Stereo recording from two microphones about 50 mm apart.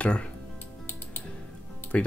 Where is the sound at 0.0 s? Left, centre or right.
Left.